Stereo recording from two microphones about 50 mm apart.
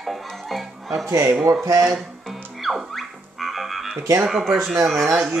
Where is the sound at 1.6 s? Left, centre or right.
Right.